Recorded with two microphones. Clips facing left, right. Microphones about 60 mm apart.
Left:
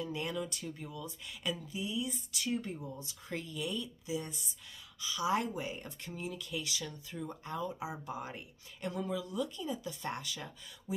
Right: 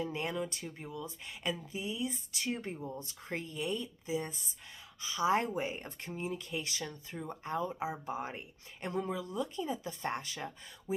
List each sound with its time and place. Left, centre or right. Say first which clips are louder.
0.0 s speech: right 1 dB; right